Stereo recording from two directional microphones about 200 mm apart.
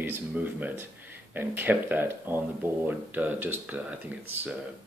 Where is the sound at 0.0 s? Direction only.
10° right (ahead or behind).